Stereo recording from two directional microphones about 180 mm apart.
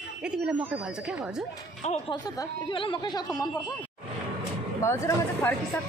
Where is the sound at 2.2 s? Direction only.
25° left (ahead or behind).